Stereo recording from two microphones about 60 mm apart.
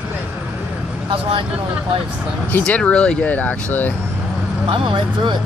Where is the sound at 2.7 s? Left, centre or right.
Centre.